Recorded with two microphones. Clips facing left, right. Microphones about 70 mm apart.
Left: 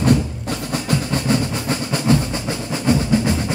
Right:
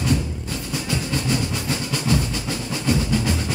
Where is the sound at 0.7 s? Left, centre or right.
Left.